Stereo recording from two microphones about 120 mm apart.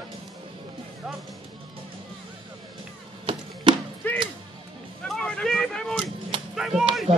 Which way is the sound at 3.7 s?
45° right (ahead or behind).